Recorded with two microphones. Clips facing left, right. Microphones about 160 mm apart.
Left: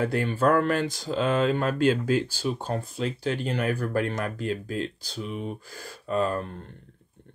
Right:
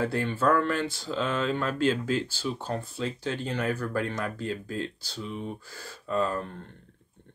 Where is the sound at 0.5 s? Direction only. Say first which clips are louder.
Left 2 dB; 45° left (ahead or behind).